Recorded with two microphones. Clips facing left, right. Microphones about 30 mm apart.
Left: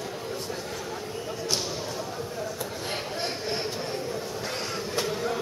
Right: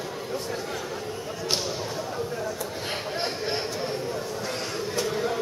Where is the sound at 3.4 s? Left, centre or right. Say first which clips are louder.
Right 2 dB; centre.